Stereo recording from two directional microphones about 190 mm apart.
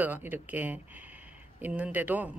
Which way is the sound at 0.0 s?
10° right (ahead or behind).